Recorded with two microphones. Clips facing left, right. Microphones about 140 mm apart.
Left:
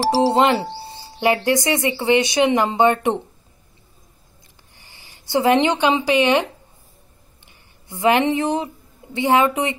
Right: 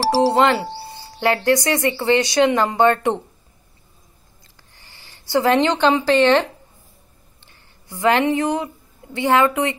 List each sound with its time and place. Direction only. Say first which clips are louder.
0.1 s speech: right 1 dB; 20° left (ahead or behind)
4.7 s speech: even; 20° left (ahead or behind)
7.4 s speech: even; 20° left (ahead or behind)